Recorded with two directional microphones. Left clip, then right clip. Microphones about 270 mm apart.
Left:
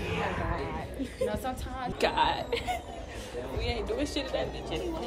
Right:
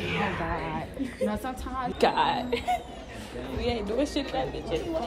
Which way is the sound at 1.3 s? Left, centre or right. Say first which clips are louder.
Right 1 dB; centre.